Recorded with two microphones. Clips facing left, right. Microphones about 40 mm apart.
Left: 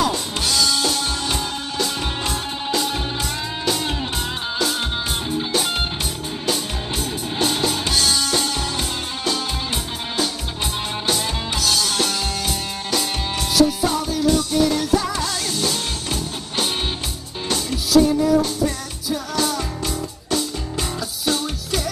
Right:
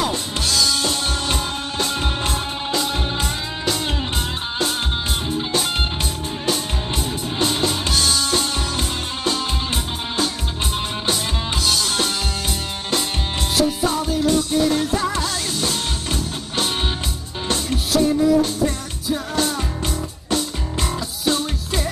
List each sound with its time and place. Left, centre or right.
0.8 s music: right
7.3 s music: right
11.6 s music: right